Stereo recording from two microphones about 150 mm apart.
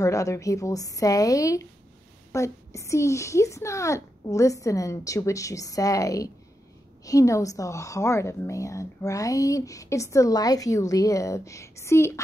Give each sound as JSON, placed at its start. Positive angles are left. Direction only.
{"t": 0.0, "sound": "a woman's voice", "side_deg": 20}